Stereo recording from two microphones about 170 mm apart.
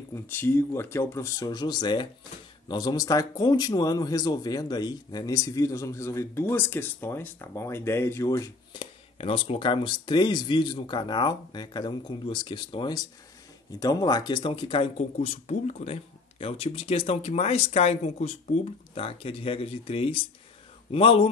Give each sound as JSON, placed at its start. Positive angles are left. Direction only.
{"t": 0.1, "sound": "speech", "side_deg": 10}
{"t": 9.2, "sound": "speech", "side_deg": 35}